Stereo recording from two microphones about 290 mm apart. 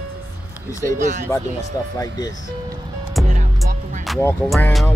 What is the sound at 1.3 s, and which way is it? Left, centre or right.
Music, centre.